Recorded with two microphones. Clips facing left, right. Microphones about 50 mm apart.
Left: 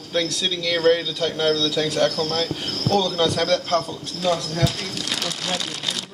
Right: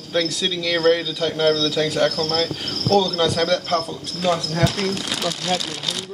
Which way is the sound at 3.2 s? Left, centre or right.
Centre.